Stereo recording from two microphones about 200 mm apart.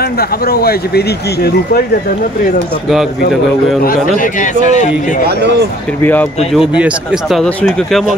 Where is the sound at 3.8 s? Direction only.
40° left (ahead or behind).